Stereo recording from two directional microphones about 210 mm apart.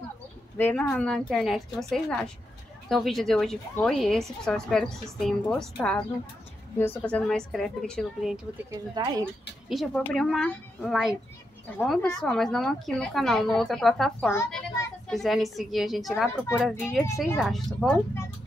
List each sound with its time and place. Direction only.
0.6 s speech: 10° left (ahead or behind)
9.0 s speech: 20° right (ahead or behind)
9.7 s a child's voice: centre (ahead or behind)